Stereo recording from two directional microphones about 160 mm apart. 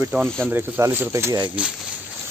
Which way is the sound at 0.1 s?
5° right (ahead or behind).